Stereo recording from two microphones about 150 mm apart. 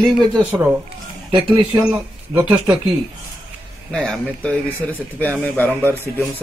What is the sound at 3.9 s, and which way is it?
Speech, 5° left (ahead or behind).